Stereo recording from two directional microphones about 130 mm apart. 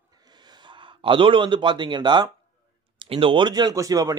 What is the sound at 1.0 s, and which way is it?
Speech, 40° right (ahead or behind).